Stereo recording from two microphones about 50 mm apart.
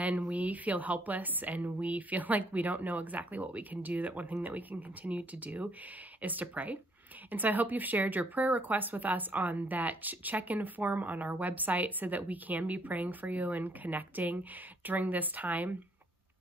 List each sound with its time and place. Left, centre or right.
0.0 s speech: right